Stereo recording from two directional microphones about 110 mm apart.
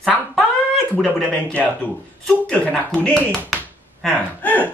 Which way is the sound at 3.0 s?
5° left (ahead or behind).